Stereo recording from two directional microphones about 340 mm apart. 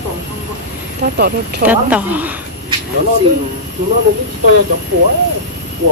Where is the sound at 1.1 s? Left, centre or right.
Right.